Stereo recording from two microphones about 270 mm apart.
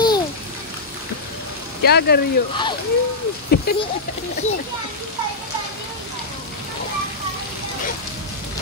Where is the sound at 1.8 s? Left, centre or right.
Left.